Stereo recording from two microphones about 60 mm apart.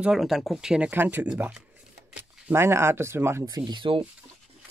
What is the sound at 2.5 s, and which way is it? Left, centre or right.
Speech, right.